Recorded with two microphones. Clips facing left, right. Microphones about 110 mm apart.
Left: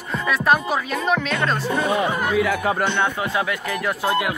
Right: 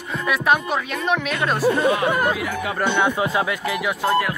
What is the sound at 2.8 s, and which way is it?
Speech, 15° right (ahead or behind).